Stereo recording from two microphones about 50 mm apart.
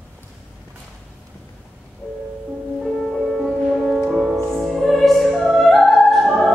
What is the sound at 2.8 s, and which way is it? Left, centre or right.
Music, centre.